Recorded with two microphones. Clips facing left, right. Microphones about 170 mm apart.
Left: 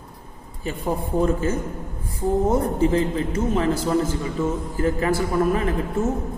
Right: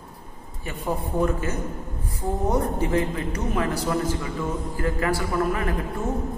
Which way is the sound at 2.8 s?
25° left (ahead or behind).